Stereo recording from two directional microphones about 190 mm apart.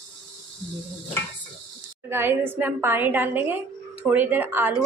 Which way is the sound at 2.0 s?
10° right (ahead or behind).